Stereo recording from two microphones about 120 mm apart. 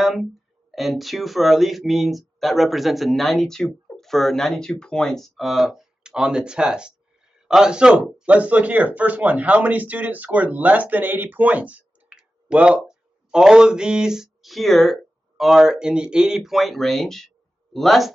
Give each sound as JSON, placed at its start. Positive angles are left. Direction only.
{"t": 0.0, "sound": "speech", "side_deg": 0}